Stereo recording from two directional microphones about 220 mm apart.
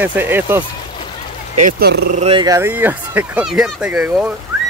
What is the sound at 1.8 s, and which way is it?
Speech, 45° right (ahead or behind).